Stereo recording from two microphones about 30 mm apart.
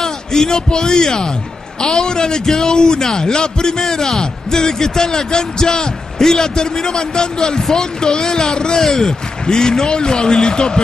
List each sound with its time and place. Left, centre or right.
0.0 s a man's voice: centre
3.8 s a man's voice: centre